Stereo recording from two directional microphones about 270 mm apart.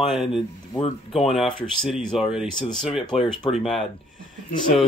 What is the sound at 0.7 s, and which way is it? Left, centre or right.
Speech, left.